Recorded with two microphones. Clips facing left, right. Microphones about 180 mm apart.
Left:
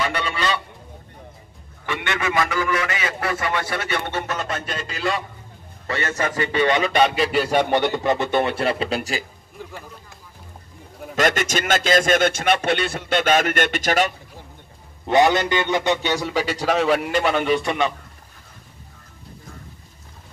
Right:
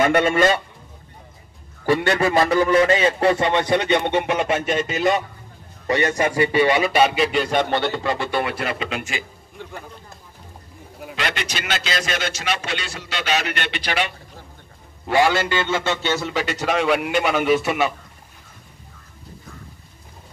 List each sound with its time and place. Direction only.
0.0 s a man's voice: 50° right (ahead or behind)
1.9 s a man's voice: 40° right (ahead or behind); by 5.0 s 5° right (ahead or behind)
5.9 s a man's voice: 15° right (ahead or behind); by 9.2 s 35° left (ahead or behind)
11.1 s music: 45° left (ahead or behind)
15.0 s a man's voice: 20° left (ahead or behind); by 17.9 s 5° right (ahead or behind)